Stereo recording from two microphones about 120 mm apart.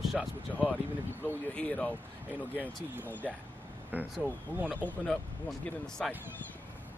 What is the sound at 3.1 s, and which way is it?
Speech, 15° left (ahead or behind).